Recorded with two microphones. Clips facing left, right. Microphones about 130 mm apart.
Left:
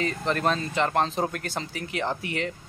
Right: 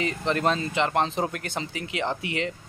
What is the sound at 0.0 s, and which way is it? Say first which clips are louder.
Speech: right 1 dB; 20° right (ahead or behind).